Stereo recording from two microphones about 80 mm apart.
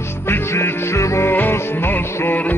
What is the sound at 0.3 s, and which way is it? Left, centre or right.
Music, left.